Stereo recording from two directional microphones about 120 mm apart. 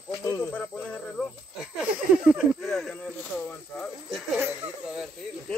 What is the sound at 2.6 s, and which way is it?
Speech, 5° left (ahead or behind).